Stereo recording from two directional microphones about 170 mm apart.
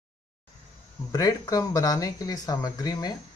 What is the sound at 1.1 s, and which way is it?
Speech, 20° left (ahead or behind).